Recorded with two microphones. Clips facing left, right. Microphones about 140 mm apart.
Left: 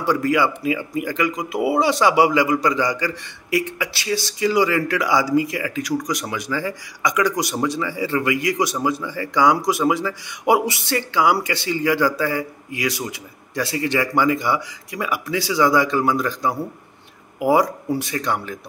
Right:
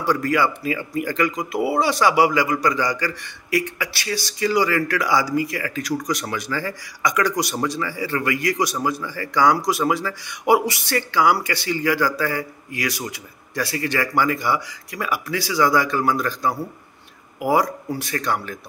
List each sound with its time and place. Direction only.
0.0 s a man's voice: 20° left (ahead or behind)